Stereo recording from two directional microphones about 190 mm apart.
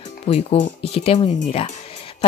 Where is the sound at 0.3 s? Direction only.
30° left (ahead or behind).